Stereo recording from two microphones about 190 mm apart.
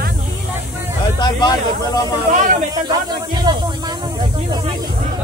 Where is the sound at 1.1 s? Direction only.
20° left (ahead or behind).